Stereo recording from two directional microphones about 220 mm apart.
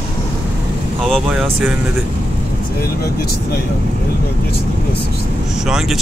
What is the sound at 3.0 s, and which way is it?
Speech, 45° left (ahead or behind).